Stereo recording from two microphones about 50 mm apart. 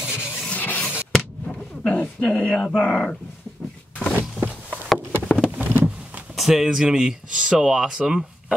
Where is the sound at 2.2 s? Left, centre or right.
Centre.